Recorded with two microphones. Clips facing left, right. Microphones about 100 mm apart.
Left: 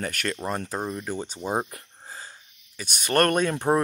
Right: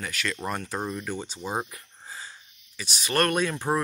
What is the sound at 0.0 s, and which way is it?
Speech, 45° left (ahead or behind).